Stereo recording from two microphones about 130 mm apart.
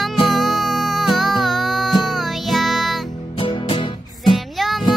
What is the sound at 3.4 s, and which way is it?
Music, 40° left (ahead or behind).